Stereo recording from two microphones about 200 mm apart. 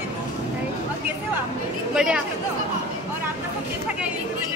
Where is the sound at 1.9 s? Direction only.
5° right (ahead or behind).